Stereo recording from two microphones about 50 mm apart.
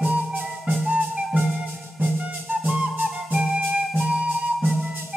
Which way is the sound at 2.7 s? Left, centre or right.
Centre.